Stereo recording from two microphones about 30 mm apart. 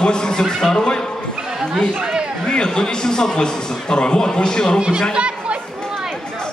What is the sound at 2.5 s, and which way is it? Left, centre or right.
A man's voice, left.